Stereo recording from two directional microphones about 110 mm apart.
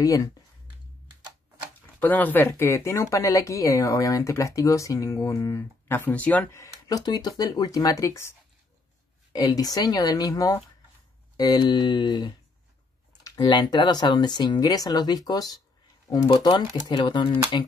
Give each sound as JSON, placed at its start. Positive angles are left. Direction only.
{"t": 0.0, "sound": "speech", "side_deg": 30}
{"t": 2.0, "sound": "speech", "side_deg": 15}
{"t": 6.5, "sound": "speech", "side_deg": 30}
{"t": 9.3, "sound": "speech", "side_deg": 40}